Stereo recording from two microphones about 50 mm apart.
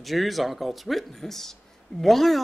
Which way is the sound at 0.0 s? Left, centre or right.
Centre.